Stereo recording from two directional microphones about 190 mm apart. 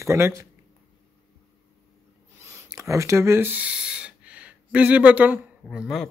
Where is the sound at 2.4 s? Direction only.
15° right (ahead or behind).